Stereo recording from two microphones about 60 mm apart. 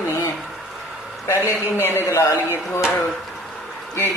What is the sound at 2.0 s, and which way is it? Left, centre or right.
Speech, left.